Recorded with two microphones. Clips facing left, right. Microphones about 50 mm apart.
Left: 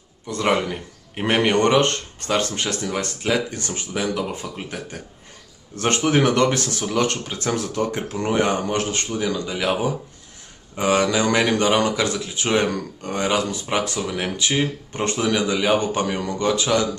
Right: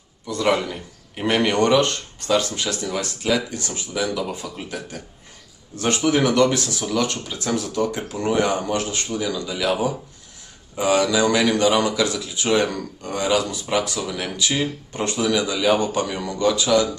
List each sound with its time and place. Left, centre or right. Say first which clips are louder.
0.5 s speech: even; left